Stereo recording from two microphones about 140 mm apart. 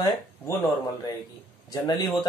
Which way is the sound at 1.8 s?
30° left (ahead or behind).